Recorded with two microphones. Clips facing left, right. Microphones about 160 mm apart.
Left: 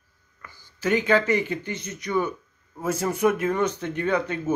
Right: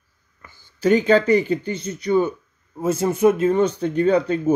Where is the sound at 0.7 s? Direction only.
30° right (ahead or behind).